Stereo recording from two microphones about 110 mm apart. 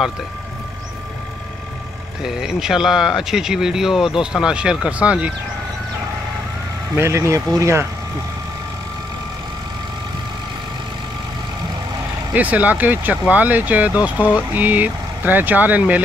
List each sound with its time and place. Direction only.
2.2 s speech: 5° right (ahead or behind)
7.0 s speech: 25° right (ahead or behind)
12.4 s speech: 15° right (ahead or behind)